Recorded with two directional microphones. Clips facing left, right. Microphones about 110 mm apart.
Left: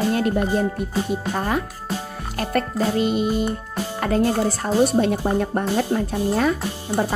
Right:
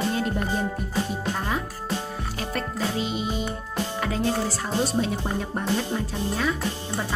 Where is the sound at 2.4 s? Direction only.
55° left (ahead or behind).